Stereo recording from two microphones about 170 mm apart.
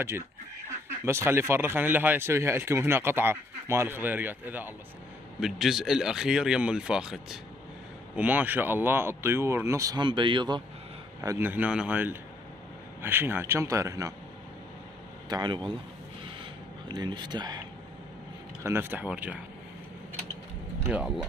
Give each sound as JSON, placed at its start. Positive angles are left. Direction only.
{"t": 1.0, "sound": "speech", "side_deg": -15}
{"t": 11.1, "sound": "speech", "side_deg": -15}
{"t": 15.2, "sound": "speech", "side_deg": -25}
{"t": 16.9, "sound": "speech", "side_deg": -25}
{"t": 18.6, "sound": "speech", "side_deg": -15}
{"t": 20.9, "sound": "speech", "side_deg": -5}